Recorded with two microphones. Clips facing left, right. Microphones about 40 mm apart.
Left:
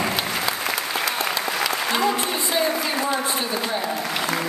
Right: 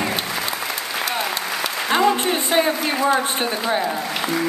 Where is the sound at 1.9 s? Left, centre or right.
Right.